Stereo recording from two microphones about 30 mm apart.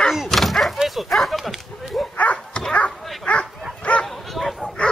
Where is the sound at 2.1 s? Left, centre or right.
Left.